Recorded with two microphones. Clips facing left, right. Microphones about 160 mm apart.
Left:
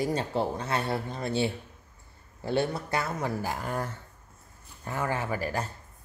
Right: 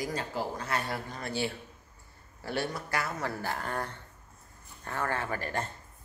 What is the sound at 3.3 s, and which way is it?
Speech, 15° left (ahead or behind).